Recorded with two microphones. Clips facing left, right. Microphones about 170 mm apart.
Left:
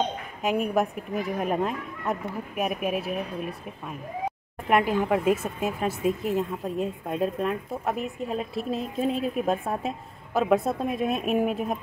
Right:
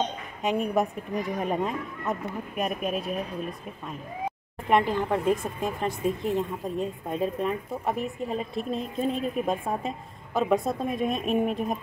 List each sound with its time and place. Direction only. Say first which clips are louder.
0.4 s speech: left 1 dB; centre (ahead or behind)